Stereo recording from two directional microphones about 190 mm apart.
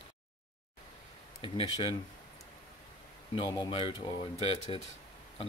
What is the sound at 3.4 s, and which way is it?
Speech, 25° left (ahead or behind).